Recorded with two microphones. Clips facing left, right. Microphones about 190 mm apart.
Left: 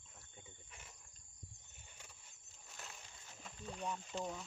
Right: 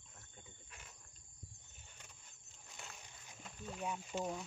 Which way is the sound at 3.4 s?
5° right (ahead or behind).